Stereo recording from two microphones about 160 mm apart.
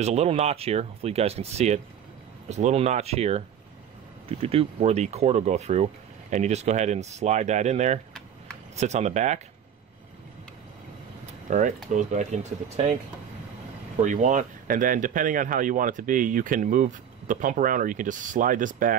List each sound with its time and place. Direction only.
0.0 s speech: 40° right (ahead or behind)
11.4 s speech: 50° right (ahead or behind)
14.0 s speech: 50° right (ahead or behind)